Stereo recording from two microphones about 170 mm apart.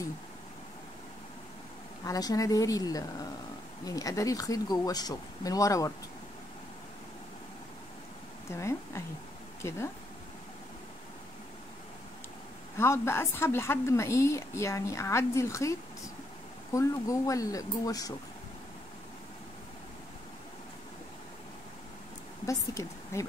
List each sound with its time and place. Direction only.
2.0 s speech: 20° left (ahead or behind)
8.5 s a woman's voice: 15° left (ahead or behind)
12.7 s a woman's voice: 15° left (ahead or behind)
16.7 s speech: 20° left (ahead or behind)
22.5 s a woman's voice: 20° left (ahead or behind)